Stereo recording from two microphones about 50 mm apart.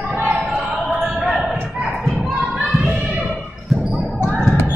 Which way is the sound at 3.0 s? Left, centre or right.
Centre.